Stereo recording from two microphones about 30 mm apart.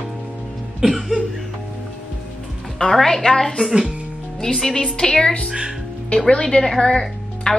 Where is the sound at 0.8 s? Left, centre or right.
Right.